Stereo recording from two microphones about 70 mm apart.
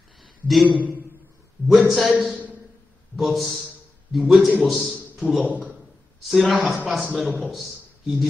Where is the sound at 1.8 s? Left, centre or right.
Centre.